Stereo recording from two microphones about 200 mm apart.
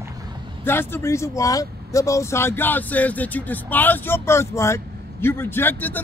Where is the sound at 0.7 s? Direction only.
10° left (ahead or behind).